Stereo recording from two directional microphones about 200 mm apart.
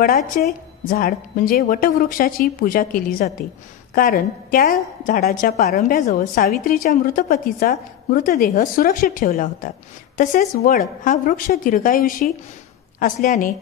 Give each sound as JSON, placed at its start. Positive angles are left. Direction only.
{"t": 0.4, "sound": "a woman's voice", "side_deg": 45}